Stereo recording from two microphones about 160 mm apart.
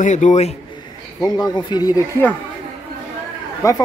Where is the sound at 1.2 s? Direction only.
25° left (ahead or behind).